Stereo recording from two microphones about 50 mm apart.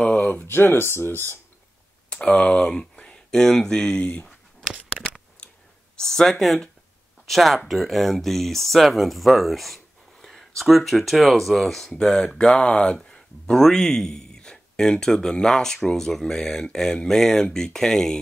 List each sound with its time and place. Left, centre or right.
0.2 s speech: left
0.5 s speech: left
2.0 s speech: left
4.0 s speech: left
5.9 s speech: centre